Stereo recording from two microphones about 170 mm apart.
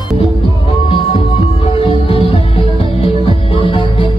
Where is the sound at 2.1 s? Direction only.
35° left (ahead or behind).